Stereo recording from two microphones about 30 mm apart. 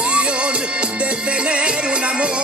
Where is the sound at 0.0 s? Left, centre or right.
Right.